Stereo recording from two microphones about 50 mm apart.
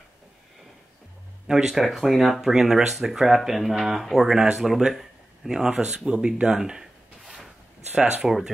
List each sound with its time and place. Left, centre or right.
1.5 s speech: centre
1.8 s speech: centre
6.0 s a sound: centre
7.9 s speech: centre